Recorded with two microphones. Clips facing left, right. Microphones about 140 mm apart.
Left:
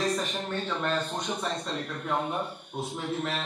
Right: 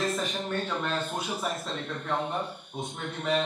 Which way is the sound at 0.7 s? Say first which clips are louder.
Left 1 dB; 5° right (ahead or behind).